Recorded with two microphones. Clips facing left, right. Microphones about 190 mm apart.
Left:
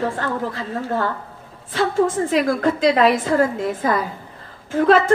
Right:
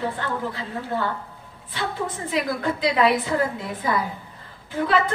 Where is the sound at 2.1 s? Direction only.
45° left (ahead or behind).